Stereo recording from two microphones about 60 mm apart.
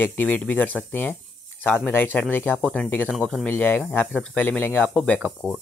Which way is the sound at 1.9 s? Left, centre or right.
Left.